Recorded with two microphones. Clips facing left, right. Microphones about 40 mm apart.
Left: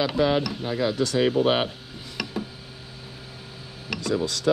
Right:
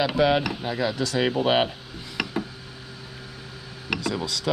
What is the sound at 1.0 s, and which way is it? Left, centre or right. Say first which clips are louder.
Speech: left 2 dB; right.